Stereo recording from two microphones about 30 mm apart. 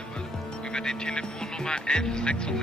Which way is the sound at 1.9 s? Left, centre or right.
Left.